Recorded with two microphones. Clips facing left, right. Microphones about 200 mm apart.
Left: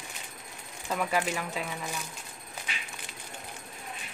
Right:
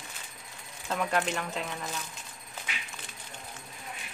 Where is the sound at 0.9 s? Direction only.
5° left (ahead or behind).